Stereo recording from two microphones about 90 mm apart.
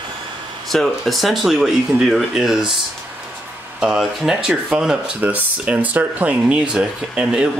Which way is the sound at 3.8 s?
5° right (ahead or behind).